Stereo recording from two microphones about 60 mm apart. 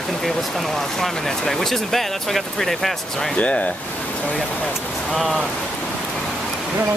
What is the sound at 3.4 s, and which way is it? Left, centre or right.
Speech, left.